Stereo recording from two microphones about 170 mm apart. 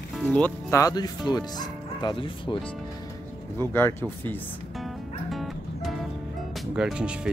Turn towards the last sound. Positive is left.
turn(degrees=-5)  # may be behind; listen again after turning